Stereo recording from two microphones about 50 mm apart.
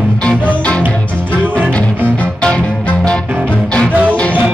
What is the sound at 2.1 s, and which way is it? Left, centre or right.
Music, left.